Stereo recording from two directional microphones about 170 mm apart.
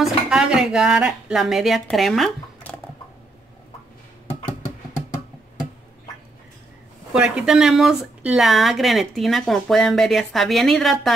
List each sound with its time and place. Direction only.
0.0 s speech: 5° right (ahead or behind)
7.2 s speech: 5° right (ahead or behind)